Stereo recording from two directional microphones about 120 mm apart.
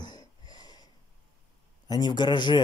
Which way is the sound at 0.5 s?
35° left (ahead or behind).